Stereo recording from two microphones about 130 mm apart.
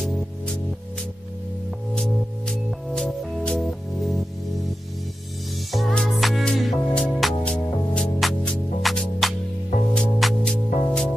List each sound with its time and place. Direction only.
2.0 s music: 5° left (ahead or behind)
5.7 s music: centre (ahead or behind)